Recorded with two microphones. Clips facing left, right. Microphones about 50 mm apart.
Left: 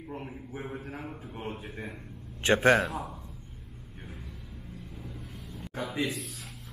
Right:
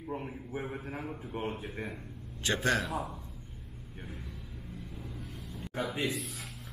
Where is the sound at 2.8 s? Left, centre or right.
Centre.